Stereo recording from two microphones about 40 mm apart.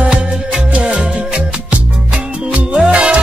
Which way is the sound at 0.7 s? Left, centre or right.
Right.